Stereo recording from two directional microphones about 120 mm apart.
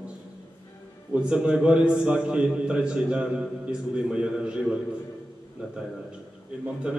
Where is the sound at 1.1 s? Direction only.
10° right (ahead or behind).